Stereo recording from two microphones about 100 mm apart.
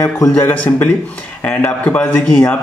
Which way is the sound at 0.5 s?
20° left (ahead or behind).